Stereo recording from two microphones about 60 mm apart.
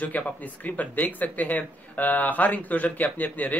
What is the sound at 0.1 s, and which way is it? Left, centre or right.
Speech, left.